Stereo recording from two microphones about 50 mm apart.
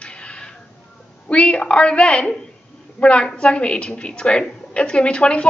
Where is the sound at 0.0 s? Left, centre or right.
Left.